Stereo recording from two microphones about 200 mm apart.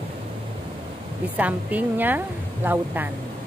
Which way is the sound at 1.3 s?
10° right (ahead or behind).